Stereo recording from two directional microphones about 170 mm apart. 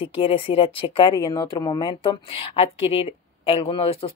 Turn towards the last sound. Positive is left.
turn(degrees=35)  # may be behind; listen again after turning